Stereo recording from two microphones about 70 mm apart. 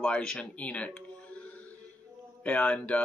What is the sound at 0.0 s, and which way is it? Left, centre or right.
Speech, centre.